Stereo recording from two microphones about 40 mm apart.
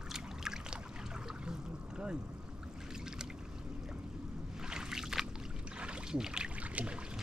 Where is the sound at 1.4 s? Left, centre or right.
Right.